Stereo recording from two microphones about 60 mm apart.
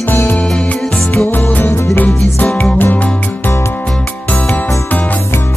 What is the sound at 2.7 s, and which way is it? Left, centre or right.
Music, left.